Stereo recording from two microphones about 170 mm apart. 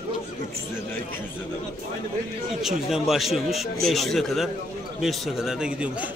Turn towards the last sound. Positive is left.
turn(degrees=-5)  # may be behind; listen again after turning